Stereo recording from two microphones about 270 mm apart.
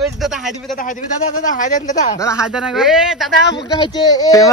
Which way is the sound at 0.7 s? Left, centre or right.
Left.